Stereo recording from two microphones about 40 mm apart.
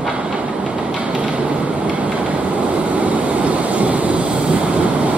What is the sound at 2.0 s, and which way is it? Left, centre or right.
Vehicle, right.